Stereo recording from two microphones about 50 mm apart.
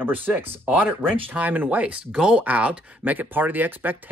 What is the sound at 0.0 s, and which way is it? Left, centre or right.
Speech, right.